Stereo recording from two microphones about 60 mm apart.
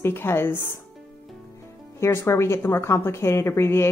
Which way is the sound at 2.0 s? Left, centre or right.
Left.